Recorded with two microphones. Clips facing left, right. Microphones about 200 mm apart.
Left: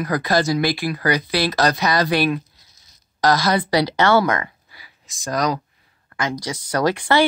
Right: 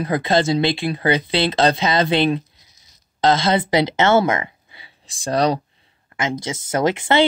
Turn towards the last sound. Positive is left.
turn(degrees=-20)  # may be behind; listen again after turning